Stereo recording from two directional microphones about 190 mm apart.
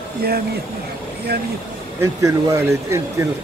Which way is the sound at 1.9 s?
15° right (ahead or behind).